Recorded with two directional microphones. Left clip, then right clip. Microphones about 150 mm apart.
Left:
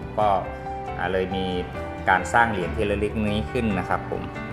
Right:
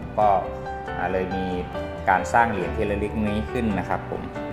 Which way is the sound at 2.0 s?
15° left (ahead or behind).